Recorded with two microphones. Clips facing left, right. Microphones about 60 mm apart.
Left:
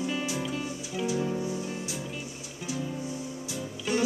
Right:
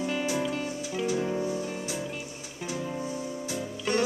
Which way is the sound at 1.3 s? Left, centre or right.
Right.